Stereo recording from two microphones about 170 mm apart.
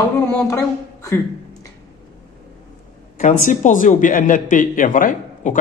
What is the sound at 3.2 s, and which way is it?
Speech, 50° left (ahead or behind).